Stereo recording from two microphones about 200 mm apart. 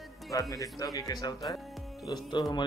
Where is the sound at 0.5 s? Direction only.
15° left (ahead or behind).